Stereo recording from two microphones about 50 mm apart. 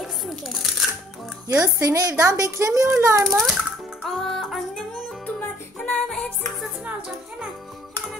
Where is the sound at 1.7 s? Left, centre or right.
Right.